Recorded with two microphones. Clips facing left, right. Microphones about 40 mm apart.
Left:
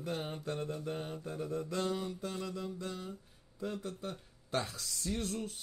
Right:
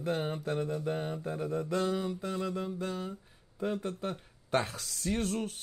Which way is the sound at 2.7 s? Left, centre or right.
Right.